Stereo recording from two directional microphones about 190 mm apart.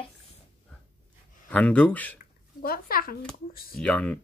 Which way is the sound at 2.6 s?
50° left (ahead or behind).